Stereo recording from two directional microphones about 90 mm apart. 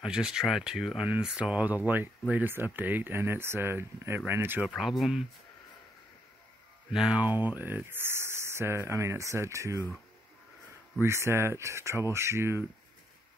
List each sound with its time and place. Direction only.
0.0 s speech: 10° right (ahead or behind); by 4.6 s 25° right (ahead or behind)
4.7 s speech: centre (ahead or behind)
6.9 s speech: 5° right (ahead or behind)
7.2 s speech: 20° right (ahead or behind); by 9.8 s 35° right (ahead or behind)
11.0 s speech: 30° right (ahead or behind)